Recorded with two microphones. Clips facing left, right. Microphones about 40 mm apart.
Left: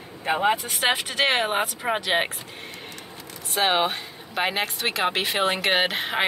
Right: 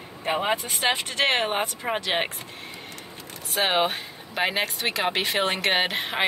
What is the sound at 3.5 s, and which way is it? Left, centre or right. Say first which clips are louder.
Speech: left 1 dB; centre.